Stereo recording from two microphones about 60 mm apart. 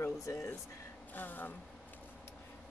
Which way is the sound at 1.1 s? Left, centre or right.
Left.